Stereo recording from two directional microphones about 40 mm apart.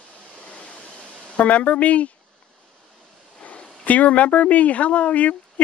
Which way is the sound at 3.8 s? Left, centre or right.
Left.